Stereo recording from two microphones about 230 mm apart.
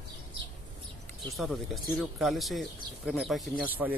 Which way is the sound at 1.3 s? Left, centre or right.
Centre.